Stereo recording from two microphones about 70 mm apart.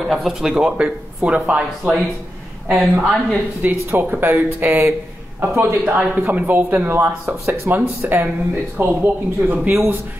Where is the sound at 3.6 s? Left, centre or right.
Right.